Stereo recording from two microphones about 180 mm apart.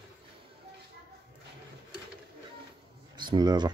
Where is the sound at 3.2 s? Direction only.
25° right (ahead or behind).